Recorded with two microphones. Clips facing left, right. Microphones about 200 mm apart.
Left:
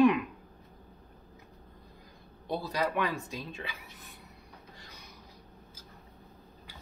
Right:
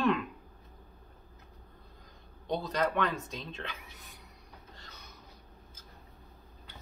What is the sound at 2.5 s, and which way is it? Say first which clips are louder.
Speech: right 1 dB; 10° left (ahead or behind).